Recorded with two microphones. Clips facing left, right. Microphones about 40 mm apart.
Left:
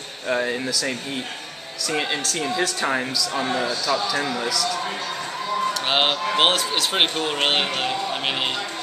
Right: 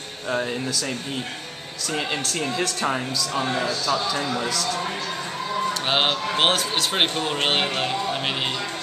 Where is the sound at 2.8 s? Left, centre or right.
Left.